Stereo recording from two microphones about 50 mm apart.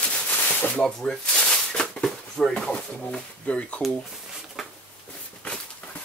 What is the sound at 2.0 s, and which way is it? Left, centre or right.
Speech, centre.